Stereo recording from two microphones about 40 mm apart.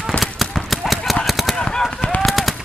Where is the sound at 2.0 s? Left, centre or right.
Left.